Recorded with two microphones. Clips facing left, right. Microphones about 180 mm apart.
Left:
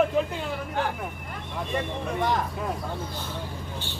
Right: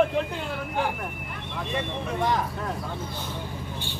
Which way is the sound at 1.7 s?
Centre (ahead or behind).